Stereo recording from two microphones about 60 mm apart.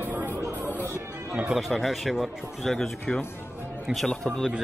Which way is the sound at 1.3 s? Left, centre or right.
Centre.